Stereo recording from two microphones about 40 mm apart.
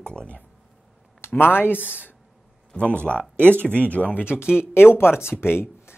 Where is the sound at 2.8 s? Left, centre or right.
Left.